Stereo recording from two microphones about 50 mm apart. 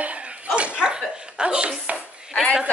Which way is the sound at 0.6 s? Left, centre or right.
Right.